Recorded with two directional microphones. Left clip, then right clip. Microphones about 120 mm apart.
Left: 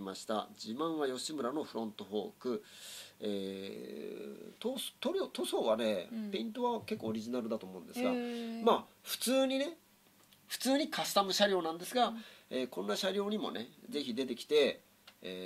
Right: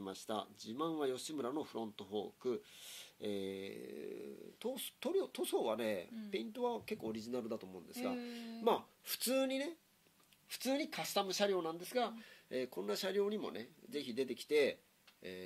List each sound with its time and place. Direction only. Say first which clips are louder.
0.0 s speech: left 5 dB; 35° right (ahead or behind)
8.1 s speech: left 8 dB; 30° left (ahead or behind)
8.6 s speech: left 5 dB; 40° right (ahead or behind)
10.6 s speech: left 6 dB; 30° right (ahead or behind)